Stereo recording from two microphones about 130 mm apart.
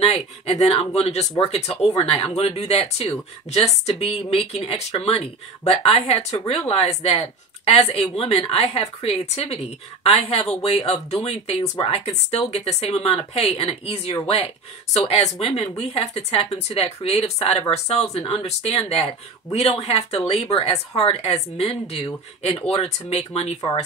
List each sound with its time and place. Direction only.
0.0 s speech: 50° left (ahead or behind)